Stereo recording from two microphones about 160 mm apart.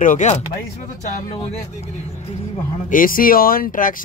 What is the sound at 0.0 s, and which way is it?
Speech, 50° left (ahead or behind).